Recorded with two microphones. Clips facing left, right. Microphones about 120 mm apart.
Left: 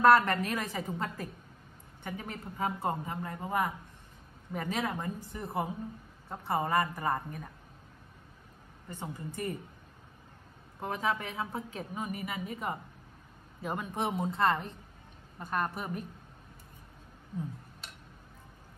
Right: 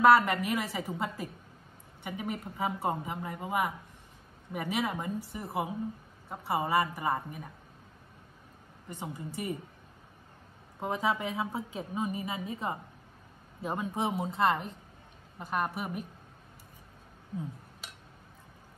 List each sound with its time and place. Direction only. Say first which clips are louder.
0.0 s a woman's voice: right 1 dB; 10° right (ahead or behind)
8.8 s speech: right 1 dB; 15° right (ahead or behind)
10.8 s speech: right 2 dB; 15° right (ahead or behind)
11.9 s a woman's voice: right 4 dB; 20° right (ahead or behind)
14.1 s speech: even; 10° right (ahead or behind)